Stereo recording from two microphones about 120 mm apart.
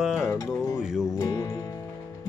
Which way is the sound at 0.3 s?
25° left (ahead or behind).